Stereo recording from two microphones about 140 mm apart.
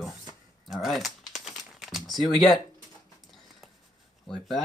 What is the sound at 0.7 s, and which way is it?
Typing, centre (ahead or behind).